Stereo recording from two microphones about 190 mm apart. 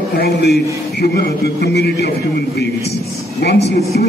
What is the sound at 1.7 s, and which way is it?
Speech, 60° left (ahead or behind).